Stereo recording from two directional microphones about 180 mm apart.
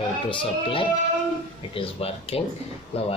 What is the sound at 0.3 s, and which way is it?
Speech, 30° left (ahead or behind).